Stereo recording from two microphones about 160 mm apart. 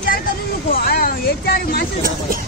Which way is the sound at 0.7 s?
70° left (ahead or behind).